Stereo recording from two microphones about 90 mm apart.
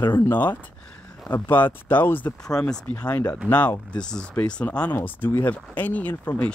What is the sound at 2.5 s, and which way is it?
Speech, 5° left (ahead or behind).